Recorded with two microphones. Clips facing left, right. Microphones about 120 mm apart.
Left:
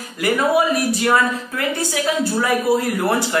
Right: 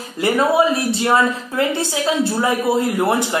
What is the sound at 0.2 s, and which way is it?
A woman's voice, 25° right (ahead or behind).